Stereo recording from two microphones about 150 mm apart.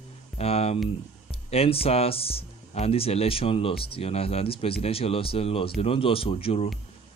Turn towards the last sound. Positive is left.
turn(degrees=40)  # may be behind; listen again after turning